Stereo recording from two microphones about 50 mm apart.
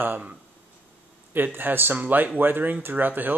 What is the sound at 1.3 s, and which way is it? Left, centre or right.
Speech, right.